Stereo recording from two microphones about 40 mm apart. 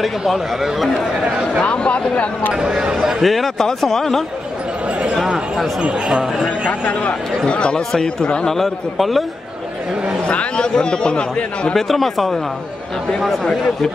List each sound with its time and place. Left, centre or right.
0.3 s a man's voice: centre
1.6 s speech: left
2.5 s speech: centre
3.3 s a man's voice: centre
6.1 s speech: centre
6.8 s speech: left
8.5 s a man's voice: centre
10.2 s speech: left
11.7 s a man's voice: centre
13.4 s a man's voice: centre